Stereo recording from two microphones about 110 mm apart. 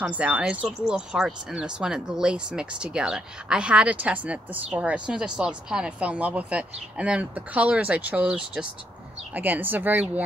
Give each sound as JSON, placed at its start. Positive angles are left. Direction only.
{"t": 0.0, "sound": "speech", "side_deg": -10}